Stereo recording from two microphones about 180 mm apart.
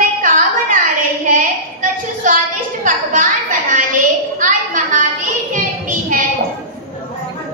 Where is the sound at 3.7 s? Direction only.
45° right (ahead or behind).